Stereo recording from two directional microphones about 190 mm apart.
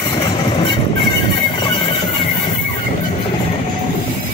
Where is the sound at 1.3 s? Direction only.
25° left (ahead or behind).